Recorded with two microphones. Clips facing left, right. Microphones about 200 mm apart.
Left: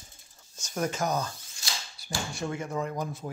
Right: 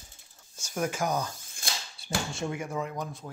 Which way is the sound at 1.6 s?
55° right (ahead or behind).